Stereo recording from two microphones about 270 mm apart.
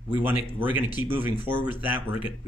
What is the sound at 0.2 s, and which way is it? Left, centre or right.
Speech, centre.